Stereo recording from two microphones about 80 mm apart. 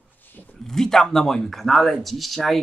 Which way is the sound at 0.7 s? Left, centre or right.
Centre.